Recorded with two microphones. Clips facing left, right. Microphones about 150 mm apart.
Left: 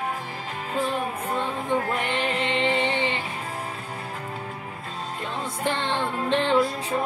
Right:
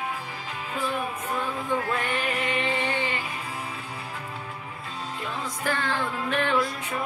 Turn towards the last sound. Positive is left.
turn(degrees=25)  # may be behind; listen again after turning